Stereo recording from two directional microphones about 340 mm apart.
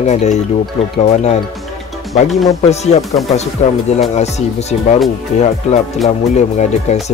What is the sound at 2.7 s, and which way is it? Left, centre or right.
Speech, centre.